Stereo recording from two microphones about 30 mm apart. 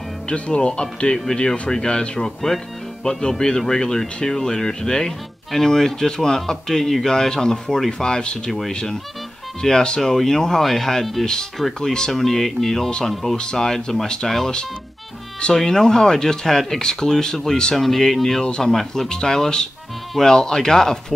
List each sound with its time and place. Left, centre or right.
0.3 s speech: left
9.6 s speech: left; by 13.4 s centre
13.4 s speech: left
13.7 s speech: centre
15.5 s speech: centre
17.7 s speech: centre